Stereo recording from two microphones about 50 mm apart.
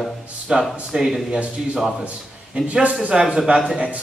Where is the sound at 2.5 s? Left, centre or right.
Right.